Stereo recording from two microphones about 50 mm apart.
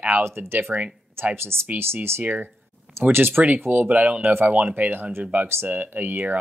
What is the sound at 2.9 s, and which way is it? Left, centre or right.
Speech, right.